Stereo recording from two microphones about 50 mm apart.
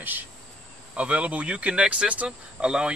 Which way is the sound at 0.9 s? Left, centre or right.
Right.